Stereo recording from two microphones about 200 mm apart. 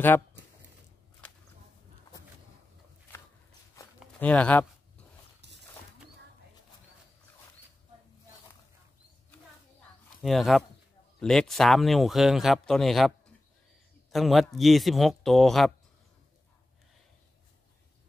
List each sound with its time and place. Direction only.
3.7 s a sound: 5° left (ahead or behind)
5.4 s dog: 60° right (ahead or behind)
10.2 s speech: centre (ahead or behind)
14.1 s speech: centre (ahead or behind)